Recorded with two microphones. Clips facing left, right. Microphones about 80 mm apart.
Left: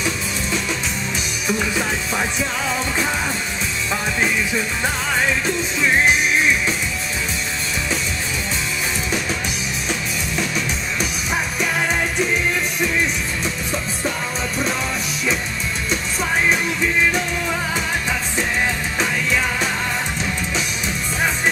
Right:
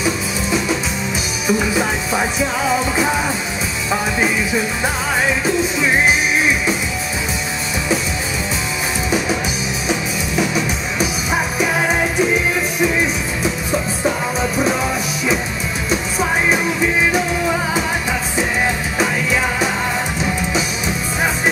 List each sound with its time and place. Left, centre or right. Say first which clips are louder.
0.0 s music: right 4 dB; centre
9.8 s music: right 5 dB; centre
13.4 s music: right 5 dB; centre
15.9 s music: right 4 dB; centre
18.9 s music: right 3 dB; centre